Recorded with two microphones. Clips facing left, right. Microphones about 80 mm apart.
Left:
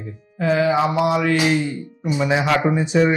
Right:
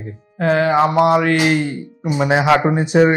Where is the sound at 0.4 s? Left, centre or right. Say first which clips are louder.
Right 3 dB; right.